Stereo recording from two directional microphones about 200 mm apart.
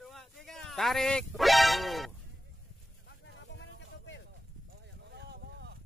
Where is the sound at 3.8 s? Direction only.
65° left (ahead or behind).